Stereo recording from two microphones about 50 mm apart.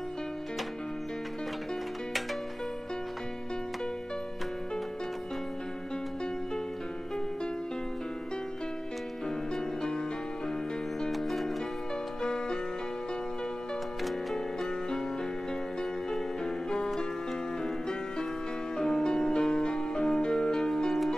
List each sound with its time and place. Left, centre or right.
11.0 s music: centre
12.2 s music: centre
14.3 s music: centre
16.1 s music: centre
18.8 s music: centre